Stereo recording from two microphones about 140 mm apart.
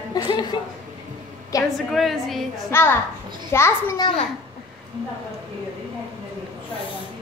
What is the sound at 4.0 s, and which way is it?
Speech, 40° left (ahead or behind).